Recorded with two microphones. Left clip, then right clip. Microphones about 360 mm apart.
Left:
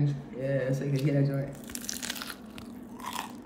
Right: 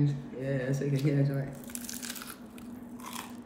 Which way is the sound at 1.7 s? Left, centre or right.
Left.